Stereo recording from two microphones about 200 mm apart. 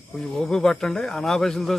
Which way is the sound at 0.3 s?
Centre (ahead or behind).